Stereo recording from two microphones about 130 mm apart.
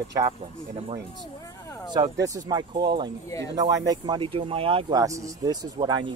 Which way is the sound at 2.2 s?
30° right (ahead or behind).